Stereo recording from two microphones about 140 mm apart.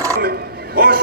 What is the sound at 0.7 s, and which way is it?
Speech, 90° right.